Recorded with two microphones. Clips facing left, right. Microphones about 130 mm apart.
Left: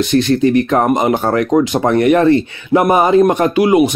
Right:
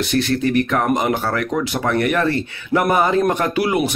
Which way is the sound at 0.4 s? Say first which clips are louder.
Left 6 dB; 25° left (ahead or behind).